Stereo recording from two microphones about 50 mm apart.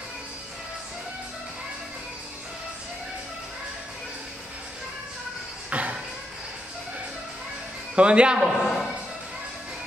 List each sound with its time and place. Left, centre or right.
5.7 s music: right
7.9 s a man's voice: right
8.4 s a man's voice: centre